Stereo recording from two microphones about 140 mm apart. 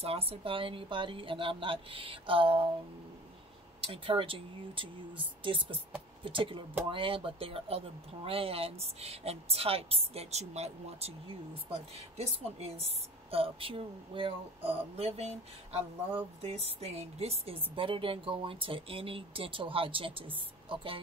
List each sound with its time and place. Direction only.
0.0 s a woman's voice: 45° right (ahead or behind)
3.8 s a woman's voice: 40° right (ahead or behind)